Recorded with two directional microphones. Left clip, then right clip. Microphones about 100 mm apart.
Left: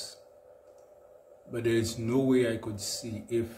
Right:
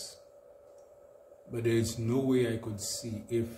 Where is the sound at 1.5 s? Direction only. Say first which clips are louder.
Left 2 dB; 15° left (ahead or behind).